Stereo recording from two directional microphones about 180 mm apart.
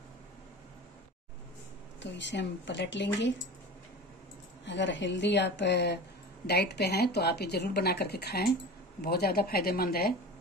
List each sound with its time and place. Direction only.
2.0 s speech: 75° left (ahead or behind)
4.6 s a woman's voice: 85° left; by 10.1 s 55° left (ahead or behind)